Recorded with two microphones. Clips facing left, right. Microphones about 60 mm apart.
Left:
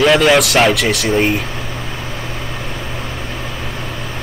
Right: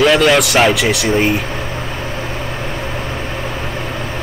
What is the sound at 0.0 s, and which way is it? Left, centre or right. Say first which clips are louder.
Speech: even; centre.